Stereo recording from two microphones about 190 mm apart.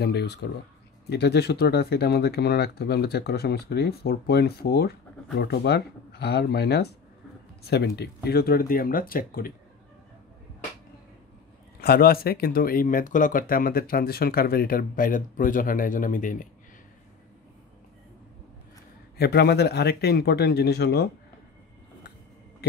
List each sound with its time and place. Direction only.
0.0 s speech: 60° left (ahead or behind)
11.8 s speech: 55° left (ahead or behind)
19.1 s speech: 55° left (ahead or behind)